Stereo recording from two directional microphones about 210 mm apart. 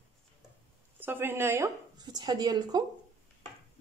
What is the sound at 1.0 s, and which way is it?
Speech, 10° right (ahead or behind).